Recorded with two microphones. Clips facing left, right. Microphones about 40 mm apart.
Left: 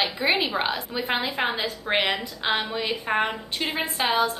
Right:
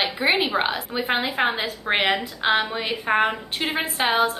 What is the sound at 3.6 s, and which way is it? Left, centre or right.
Speech, right.